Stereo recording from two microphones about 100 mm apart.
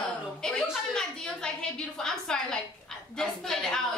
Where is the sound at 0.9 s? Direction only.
10° left (ahead or behind).